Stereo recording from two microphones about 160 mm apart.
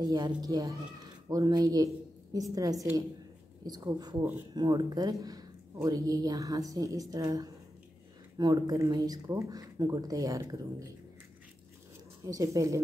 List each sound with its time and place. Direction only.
0.0 s speech: 25° right (ahead or behind)
12.3 s speech: 20° right (ahead or behind)